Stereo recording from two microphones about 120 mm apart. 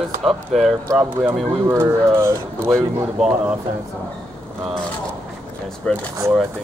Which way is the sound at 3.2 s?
10° right (ahead or behind).